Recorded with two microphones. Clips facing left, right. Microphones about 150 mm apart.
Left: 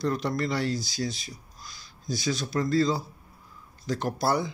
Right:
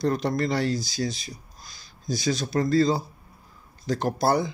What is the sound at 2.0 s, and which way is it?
Speech, 40° right (ahead or behind).